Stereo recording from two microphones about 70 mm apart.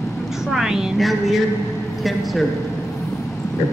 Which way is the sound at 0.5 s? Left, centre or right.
Centre.